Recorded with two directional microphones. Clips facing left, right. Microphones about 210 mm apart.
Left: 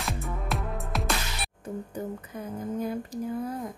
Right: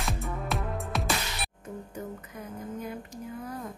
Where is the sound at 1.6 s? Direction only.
30° left (ahead or behind).